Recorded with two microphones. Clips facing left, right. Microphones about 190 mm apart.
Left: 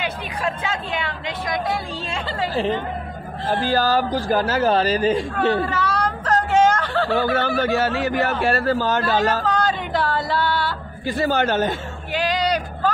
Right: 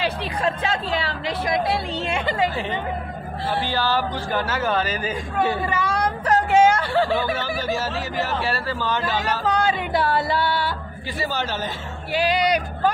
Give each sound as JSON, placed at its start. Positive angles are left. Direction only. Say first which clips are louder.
{"t": 0.0, "sound": "chatter", "louder": "right 2 dB", "side_deg": -35}
{"t": 3.7, "sound": "speech", "louder": "left 7 dB", "side_deg": 40}
{"t": 5.4, "sound": "a sound", "louder": "left 2 dB", "side_deg": -10}
{"t": 7.2, "sound": "speech", "louder": "left 5 dB", "side_deg": 55}
{"t": 9.5, "sound": "a sound", "louder": "even", "side_deg": -10}
{"t": 11.1, "sound": "speech", "louder": "left 7 dB", "side_deg": 50}
{"t": 12.1, "sound": "music", "louder": "right 1 dB", "side_deg": -10}